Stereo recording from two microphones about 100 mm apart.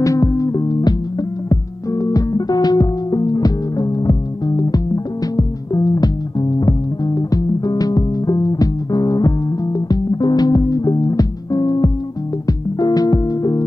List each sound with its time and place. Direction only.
0.0 s music: 35° left (ahead or behind)
7.2 s music: 35° left (ahead or behind)